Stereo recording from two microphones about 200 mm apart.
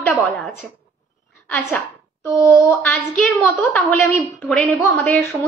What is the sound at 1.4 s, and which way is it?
A woman's voice, 10° left (ahead or behind).